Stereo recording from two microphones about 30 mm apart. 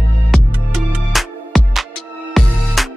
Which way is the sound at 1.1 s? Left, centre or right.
Centre.